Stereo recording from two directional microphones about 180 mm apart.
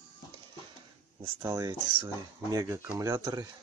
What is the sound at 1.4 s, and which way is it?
Speech, 20° right (ahead or behind).